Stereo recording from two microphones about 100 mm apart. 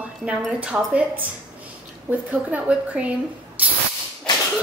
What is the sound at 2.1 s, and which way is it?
A woman's voice, 15° right (ahead or behind).